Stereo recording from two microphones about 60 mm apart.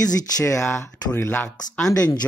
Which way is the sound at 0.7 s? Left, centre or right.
Left.